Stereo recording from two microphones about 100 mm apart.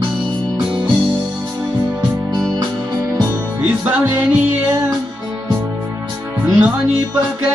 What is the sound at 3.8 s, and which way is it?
Music, 20° right (ahead or behind).